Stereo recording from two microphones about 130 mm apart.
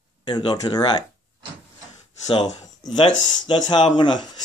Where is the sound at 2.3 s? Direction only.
35° left (ahead or behind).